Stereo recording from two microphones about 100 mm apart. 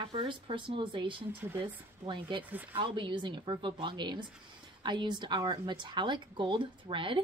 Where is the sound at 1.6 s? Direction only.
55° right (ahead or behind).